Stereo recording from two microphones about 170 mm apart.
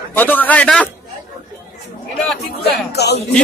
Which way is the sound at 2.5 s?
70° left (ahead or behind).